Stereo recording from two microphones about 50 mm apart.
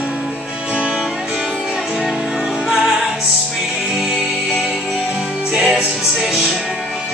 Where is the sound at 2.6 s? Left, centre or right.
Centre.